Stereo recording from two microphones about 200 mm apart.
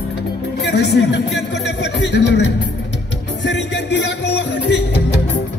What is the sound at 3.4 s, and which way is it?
Music, 60° left (ahead or behind).